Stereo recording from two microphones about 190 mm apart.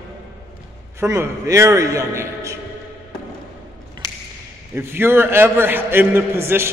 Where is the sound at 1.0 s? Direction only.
15° right (ahead or behind).